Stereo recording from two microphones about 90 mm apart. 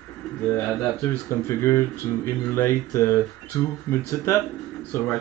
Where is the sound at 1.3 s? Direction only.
30° left (ahead or behind).